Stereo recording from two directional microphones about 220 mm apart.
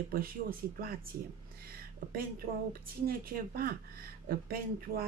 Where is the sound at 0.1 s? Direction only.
40° right (ahead or behind).